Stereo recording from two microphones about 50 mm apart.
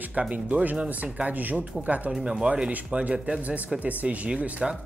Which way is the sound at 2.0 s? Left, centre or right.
Centre.